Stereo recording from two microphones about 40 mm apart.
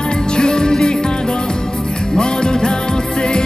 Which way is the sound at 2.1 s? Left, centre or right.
Centre.